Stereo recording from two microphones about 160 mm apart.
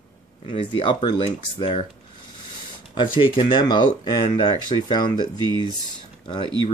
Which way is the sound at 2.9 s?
30° left (ahead or behind).